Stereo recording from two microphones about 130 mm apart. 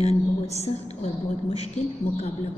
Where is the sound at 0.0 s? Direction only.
55° left (ahead or behind).